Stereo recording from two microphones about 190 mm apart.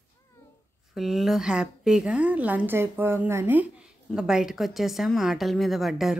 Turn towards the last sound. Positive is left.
turn(degrees=0)  # may be behind; listen again after turning